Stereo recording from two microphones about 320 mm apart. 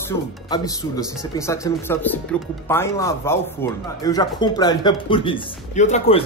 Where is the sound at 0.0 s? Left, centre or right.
Centre.